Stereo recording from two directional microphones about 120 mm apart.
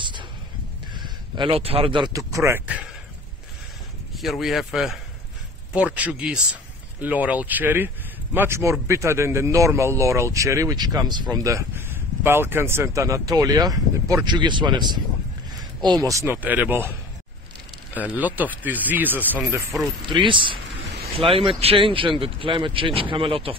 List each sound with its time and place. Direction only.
0.9 s speech: 40° right (ahead or behind)
2.1 s speech: 25° right (ahead or behind)
4.2 s speech: centre (ahead or behind); by 16.3 s 25° right (ahead or behind)
16.3 s speech: 15° right (ahead or behind)
17.9 s speech: 15° right (ahead or behind)
20.1 s speech: 45° right (ahead or behind)